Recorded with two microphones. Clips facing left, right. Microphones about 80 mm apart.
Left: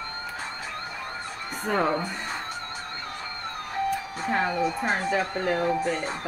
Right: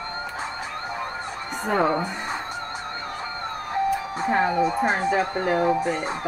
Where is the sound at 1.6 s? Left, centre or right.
Centre.